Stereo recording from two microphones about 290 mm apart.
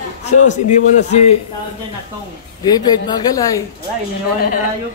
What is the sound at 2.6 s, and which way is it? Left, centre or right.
Speech, centre.